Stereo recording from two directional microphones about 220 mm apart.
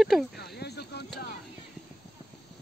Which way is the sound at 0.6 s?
50° left (ahead or behind).